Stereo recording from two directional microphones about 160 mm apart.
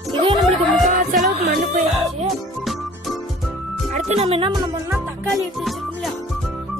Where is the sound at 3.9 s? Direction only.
45° right (ahead or behind).